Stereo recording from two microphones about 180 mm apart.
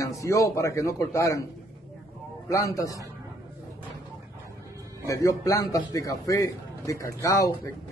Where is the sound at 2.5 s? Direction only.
20° left (ahead or behind).